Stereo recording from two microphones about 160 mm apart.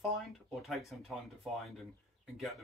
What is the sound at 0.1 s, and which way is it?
Speech, centre (ahead or behind).